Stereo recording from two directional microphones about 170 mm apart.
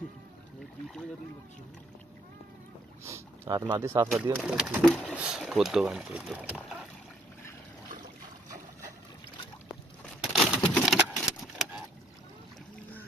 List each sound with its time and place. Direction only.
3.0 s boat: 20° right (ahead or behind)
3.7 s speech: 15° right (ahead or behind)
4.1 s speech: 5° right (ahead or behind)
10.3 s vehicle: centre (ahead or behind)